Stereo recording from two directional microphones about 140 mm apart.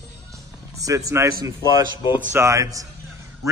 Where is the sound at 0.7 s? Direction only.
25° right (ahead or behind).